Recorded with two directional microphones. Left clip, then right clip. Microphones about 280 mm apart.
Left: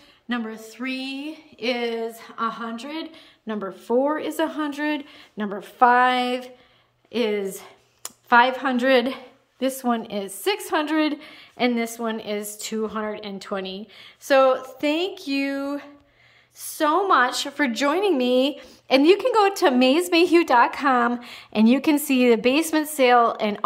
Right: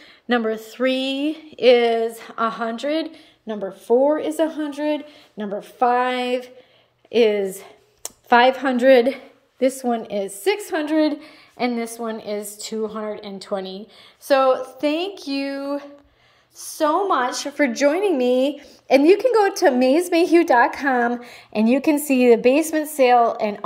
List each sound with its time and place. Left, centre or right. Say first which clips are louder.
0.3 s speech: right 9 dB; centre
3.4 s speech: right 5 dB; centre
11.2 s speech: left 1 dB; left
11.9 s speech: right 1 dB; centre
14.5 s a woman's voice: right 3 dB; left
14.9 s a woman's voice: even; centre